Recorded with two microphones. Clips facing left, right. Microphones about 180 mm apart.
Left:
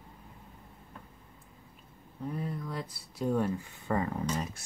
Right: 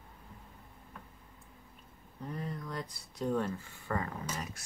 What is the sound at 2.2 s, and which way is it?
Speech, 5° left (ahead or behind).